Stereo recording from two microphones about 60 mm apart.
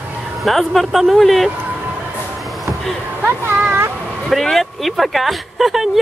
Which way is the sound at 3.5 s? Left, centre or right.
Right.